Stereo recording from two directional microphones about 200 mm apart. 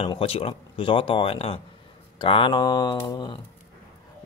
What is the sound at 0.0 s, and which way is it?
Speech, 30° left (ahead or behind).